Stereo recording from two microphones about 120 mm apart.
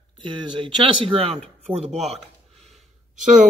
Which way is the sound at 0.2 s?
45° right (ahead or behind).